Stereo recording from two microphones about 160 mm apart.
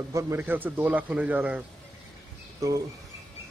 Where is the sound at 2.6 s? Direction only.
20° right (ahead or behind).